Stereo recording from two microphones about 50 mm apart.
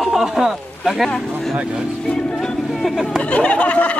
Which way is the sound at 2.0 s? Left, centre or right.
Centre.